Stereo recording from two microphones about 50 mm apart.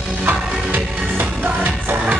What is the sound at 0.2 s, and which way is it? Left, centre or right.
Music, right.